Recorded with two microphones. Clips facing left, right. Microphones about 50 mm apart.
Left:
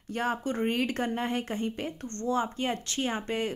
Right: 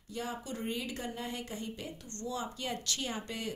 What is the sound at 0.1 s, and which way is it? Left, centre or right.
A woman's voice, left.